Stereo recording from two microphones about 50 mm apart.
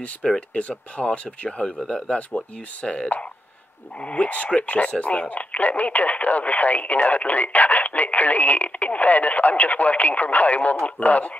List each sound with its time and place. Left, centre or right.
0.2 s speech: centre
0.6 s speech: left